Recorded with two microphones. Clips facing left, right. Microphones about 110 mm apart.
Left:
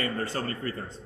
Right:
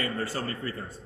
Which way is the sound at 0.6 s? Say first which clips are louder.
Left 2 dB; 45° left (ahead or behind).